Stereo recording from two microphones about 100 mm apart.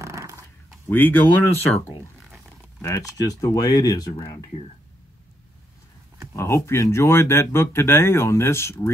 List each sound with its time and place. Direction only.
0.0 s a sound: 30° right (ahead or behind)
0.8 s speech: 20° left (ahead or behind)
2.8 s speech: 30° left (ahead or behind)
6.3 s speech: 30° left (ahead or behind)